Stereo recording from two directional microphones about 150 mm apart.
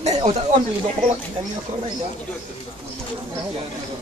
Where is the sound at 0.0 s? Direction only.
50° right (ahead or behind).